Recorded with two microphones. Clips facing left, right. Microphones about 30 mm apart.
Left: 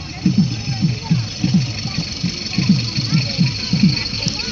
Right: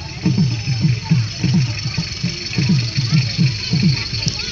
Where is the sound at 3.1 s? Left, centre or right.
Centre.